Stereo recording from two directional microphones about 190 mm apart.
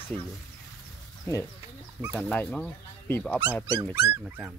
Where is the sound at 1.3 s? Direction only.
15° left (ahead or behind).